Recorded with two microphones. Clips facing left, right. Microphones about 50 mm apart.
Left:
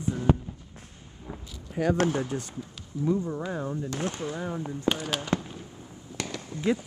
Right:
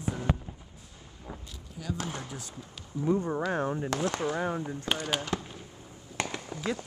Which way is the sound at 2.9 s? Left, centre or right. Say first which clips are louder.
Left 2 dB; centre.